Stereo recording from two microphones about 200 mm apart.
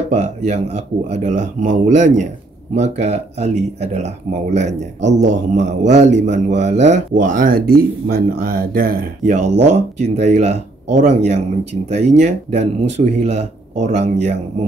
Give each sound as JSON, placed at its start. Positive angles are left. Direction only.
{"t": 0.1, "sound": "a man's voice", "side_deg": -35}